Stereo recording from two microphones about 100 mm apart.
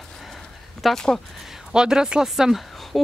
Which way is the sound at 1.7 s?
5° right (ahead or behind).